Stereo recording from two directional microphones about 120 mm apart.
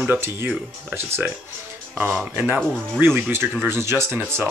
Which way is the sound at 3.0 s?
20° right (ahead or behind).